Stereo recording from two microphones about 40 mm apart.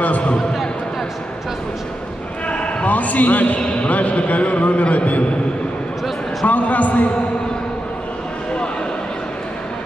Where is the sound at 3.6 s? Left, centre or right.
Left.